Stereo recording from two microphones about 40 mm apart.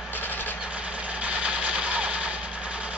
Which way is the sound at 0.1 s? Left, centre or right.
Left.